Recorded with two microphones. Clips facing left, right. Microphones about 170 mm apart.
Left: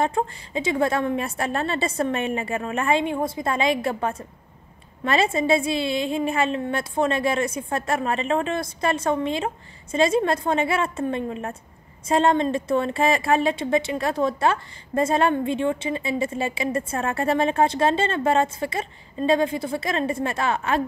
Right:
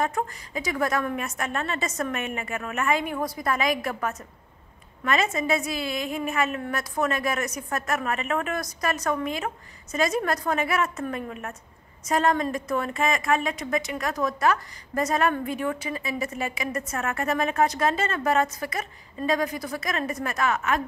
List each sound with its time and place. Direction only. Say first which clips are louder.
0.0 s a woman's voice: left 4 dB; 25° left (ahead or behind)